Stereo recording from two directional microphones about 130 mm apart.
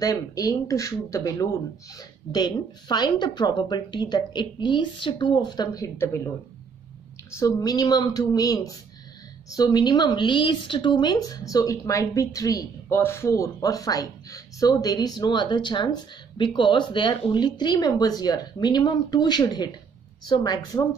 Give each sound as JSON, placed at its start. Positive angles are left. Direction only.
{"t": 0.0, "sound": "a woman's voice", "side_deg": 25}
{"t": 7.3, "sound": "a woman's voice", "side_deg": 25}